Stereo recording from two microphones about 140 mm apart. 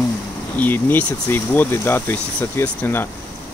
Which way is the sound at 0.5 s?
15° left (ahead or behind).